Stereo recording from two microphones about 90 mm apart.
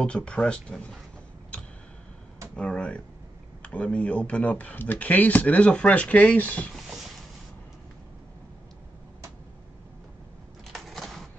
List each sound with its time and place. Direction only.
0.0 s speech: 10° left (ahead or behind)
2.5 s speech: 10° left (ahead or behind)
10.7 s a sound: centre (ahead or behind)